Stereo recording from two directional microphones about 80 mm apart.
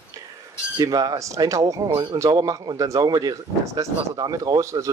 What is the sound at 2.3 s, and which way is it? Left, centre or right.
Speech, right.